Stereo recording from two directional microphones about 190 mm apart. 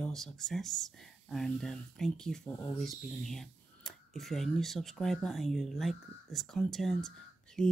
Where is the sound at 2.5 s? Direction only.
15° left (ahead or behind).